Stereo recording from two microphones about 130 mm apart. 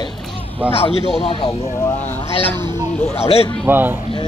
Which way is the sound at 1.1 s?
45° left (ahead or behind).